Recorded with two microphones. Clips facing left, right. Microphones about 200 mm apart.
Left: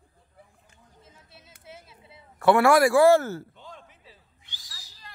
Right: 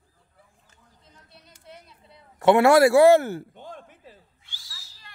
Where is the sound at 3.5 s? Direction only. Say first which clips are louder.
Right 5 dB; 50° right (ahead or behind).